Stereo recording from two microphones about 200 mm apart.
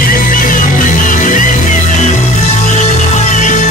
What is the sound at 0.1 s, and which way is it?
Music, 45° left (ahead or behind).